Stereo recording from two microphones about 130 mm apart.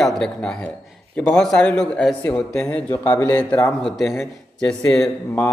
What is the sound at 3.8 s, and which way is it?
Speech, centre (ahead or behind).